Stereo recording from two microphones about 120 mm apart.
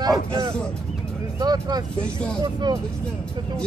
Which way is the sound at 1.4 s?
35° right (ahead or behind).